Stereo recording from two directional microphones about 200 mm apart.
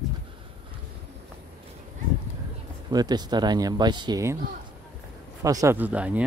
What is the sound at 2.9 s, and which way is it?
Speech, 20° right (ahead or behind).